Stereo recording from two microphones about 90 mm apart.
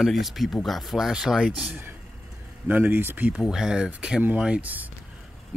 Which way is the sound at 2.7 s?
20° right (ahead or behind).